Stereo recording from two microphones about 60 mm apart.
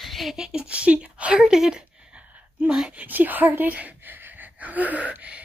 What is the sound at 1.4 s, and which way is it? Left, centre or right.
Speech, centre.